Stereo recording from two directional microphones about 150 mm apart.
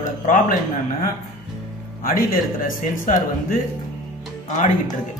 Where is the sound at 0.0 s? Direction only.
60° left (ahead or behind).